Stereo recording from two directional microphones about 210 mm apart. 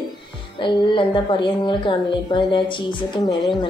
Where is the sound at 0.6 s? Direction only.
25° left (ahead or behind).